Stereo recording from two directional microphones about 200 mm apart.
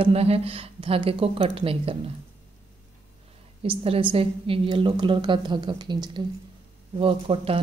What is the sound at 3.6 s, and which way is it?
A woman's voice, 30° right (ahead or behind).